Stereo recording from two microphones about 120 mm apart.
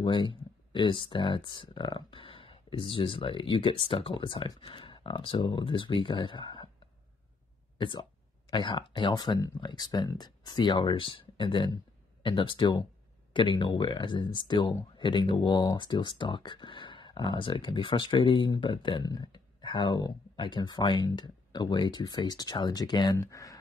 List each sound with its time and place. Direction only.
0.0 s speech: 40° left (ahead or behind)
7.7 s speech: 45° left (ahead or behind)